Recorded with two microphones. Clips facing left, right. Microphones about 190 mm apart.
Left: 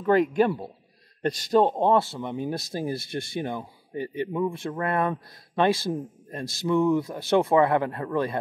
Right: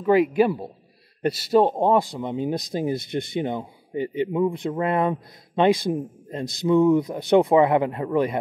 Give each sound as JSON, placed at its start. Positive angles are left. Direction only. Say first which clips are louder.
{"t": 0.0, "sound": "speech", "louder": "right 3 dB", "side_deg": -10}